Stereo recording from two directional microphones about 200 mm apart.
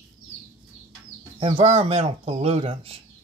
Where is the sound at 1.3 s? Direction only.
30° right (ahead or behind).